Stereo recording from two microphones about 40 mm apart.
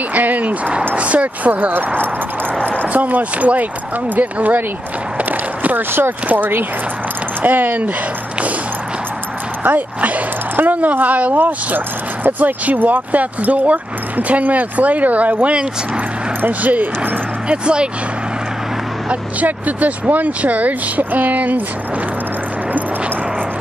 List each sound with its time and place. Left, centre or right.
0.1 s speech: right
2.9 s speech: right
5.8 s speech: right
6.2 s speech: right
9.7 s a woman's voice: right
11.3 s speech: right
16.3 s speech: right
17.5 s speech: right
19.4 s speech: right